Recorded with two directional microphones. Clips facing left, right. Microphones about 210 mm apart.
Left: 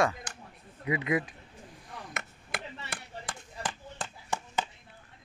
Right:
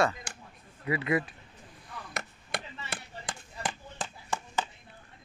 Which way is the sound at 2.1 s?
35° right (ahead or behind).